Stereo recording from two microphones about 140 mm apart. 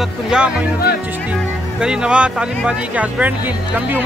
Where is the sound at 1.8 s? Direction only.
5° right (ahead or behind).